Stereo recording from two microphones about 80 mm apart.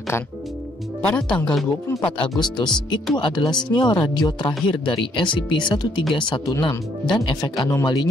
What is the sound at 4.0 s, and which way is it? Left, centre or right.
Speech, left.